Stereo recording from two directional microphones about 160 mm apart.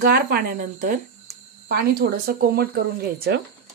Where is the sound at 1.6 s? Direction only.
70° right (ahead or behind); by 3.4 s 90° right.